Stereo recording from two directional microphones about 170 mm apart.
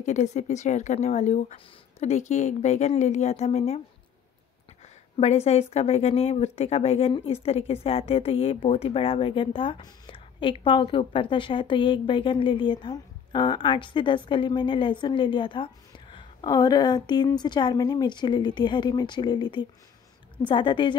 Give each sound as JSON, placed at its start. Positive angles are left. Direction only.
{"t": 0.0, "sound": "speech", "side_deg": 45}
{"t": 5.1, "sound": "a woman's voice", "side_deg": 40}